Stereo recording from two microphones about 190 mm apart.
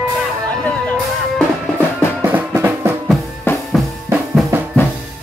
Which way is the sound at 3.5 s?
10° left (ahead or behind).